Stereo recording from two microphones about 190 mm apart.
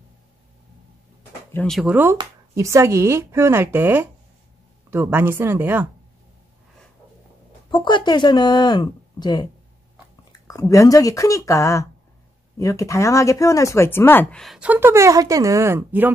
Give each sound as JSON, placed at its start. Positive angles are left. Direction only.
{"t": 1.5, "sound": "a woman's voice", "side_deg": 5}
{"t": 7.7, "sound": "speech", "side_deg": 25}
{"t": 10.7, "sound": "speech", "side_deg": 15}